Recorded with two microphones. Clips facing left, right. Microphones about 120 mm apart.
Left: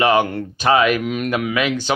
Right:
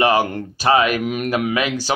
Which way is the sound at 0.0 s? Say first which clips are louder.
Left 1 dB; 35° right (ahead or behind).